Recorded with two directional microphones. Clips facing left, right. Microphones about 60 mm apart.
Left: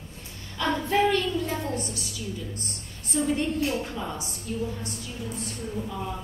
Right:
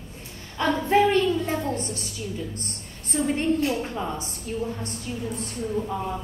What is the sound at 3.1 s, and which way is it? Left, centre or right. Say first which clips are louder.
Speech: right 1 dB; right.